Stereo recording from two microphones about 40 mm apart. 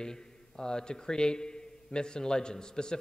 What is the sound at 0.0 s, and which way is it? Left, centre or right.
A man's voice, centre.